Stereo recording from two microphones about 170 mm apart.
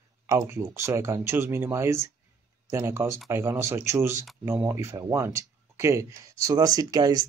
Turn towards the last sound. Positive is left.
turn(degrees=-20)  # may be behind; listen again after turning